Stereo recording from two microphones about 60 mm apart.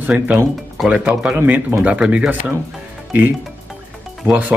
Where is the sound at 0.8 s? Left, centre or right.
Centre.